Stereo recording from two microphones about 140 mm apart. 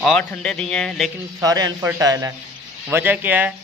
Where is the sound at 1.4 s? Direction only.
25° right (ahead or behind).